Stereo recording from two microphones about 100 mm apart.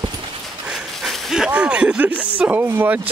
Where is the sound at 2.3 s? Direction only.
20° right (ahead or behind).